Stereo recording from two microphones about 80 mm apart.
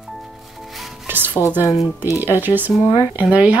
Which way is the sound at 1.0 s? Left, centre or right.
Right.